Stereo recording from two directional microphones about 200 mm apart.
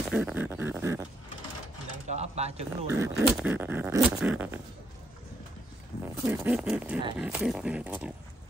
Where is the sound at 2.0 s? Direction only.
35° right (ahead or behind).